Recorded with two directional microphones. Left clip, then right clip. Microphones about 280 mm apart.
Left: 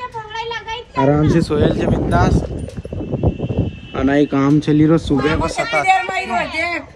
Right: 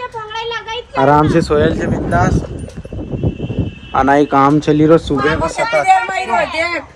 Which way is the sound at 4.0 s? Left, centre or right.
Centre.